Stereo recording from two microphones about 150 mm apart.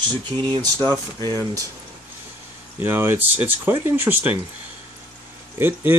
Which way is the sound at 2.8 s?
15° right (ahead or behind).